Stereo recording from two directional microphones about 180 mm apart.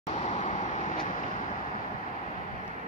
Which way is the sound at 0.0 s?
35° left (ahead or behind).